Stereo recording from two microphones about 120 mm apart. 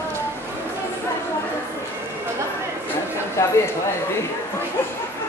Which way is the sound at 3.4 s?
20° left (ahead or behind).